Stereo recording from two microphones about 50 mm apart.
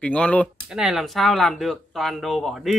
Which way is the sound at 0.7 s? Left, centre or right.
Centre.